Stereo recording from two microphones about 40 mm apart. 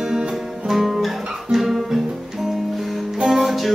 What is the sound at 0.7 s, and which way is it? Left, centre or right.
Guitar, centre.